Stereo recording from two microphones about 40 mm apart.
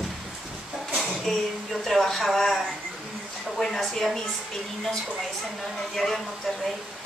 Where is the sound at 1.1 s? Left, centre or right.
Centre.